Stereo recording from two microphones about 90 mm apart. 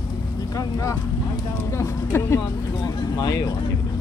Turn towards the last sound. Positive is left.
turn(degrees=45)  # may be behind; listen again after turning